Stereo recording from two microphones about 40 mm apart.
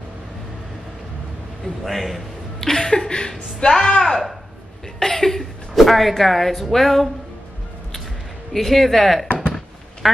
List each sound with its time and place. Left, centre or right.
1.9 s speech: centre
2.6 s a woman's voice: centre
8.5 s speech: centre